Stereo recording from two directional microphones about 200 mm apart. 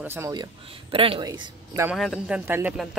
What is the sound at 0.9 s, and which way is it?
A man's voice, 25° right (ahead or behind).